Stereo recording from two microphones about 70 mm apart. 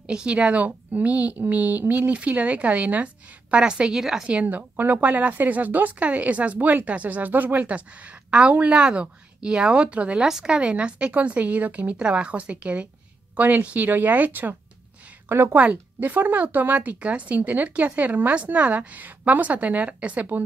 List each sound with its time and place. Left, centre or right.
0.0 s speech: centre
15.2 s a woman's voice: right
15.5 s speech: right